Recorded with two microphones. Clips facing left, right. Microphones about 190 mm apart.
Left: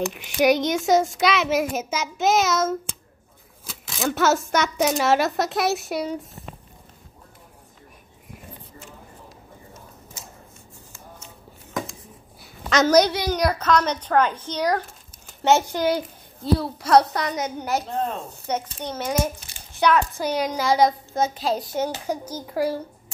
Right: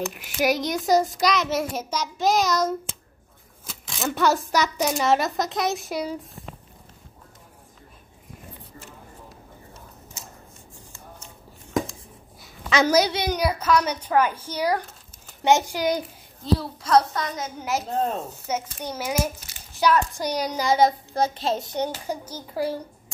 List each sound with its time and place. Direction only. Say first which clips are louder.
0.1 s a child's voice: left 4 dB; centre (ahead or behind)
3.8 s a child's voice: left 1 dB; 5° left (ahead or behind)
12.4 s a sound: left 1 dB; 5° right (ahead or behind)
13.1 s a child's voice: left 1 dB; 20° right (ahead or behind)
13.4 s a woman's voice: left 1 dB; 10° right (ahead or behind)
16.5 s a woman's voice: left 2 dB; 70° left (ahead or behind)
17.6 s a child's voice: right 4 dB; centre (ahead or behind)